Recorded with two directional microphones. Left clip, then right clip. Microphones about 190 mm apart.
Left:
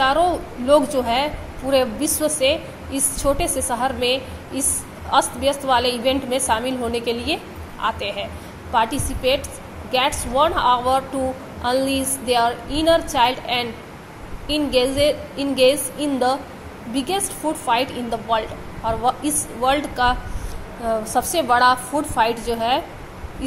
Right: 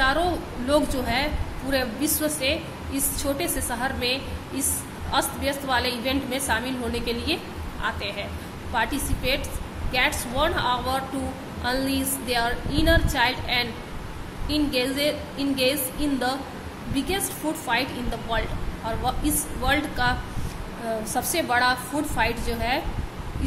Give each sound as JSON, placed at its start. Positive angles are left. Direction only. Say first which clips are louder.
{"t": 0.0, "sound": "a woman's voice", "louder": "left 5 dB", "side_deg": 20}